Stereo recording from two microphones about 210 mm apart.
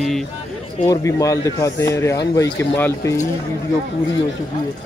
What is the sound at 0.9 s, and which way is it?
Speech, 15° left (ahead or behind).